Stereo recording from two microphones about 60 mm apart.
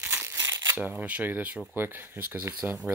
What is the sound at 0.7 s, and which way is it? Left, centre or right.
Speech, right.